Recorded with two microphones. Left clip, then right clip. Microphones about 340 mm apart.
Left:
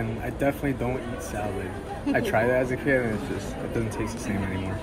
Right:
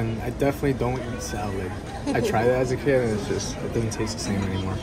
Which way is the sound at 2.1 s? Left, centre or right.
Centre.